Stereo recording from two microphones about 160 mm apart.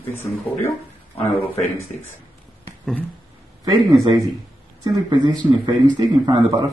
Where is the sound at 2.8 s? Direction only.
10° left (ahead or behind).